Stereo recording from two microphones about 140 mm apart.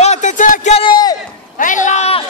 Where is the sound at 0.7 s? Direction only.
40° left (ahead or behind).